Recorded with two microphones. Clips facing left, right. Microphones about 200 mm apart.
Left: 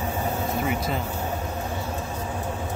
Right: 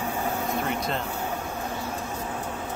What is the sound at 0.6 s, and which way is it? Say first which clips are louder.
Speech: left 2 dB; 5° left (ahead or behind).